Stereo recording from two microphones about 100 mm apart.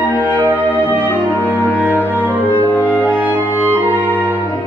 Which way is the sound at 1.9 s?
15° right (ahead or behind).